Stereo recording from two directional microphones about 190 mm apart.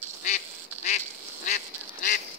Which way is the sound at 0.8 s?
40° left (ahead or behind).